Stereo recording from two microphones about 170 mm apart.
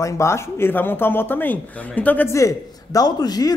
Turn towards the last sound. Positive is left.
turn(degrees=20)  # may be behind; listen again after turning